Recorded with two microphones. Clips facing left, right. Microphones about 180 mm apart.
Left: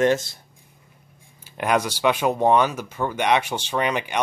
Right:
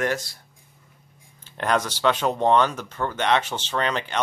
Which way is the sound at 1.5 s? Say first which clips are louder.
Left 2 dB; 10° left (ahead or behind).